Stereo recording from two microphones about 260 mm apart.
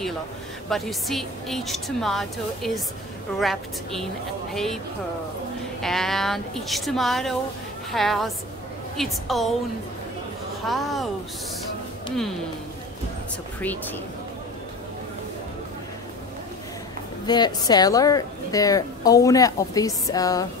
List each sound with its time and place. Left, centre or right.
0.7 s a woman's voice: centre
5.8 s a woman's voice: centre
10.7 s a woman's voice: centre
17.3 s a woman's voice: centre